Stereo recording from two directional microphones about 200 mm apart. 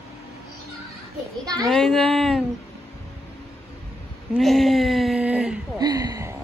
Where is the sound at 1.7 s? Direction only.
Centre (ahead or behind).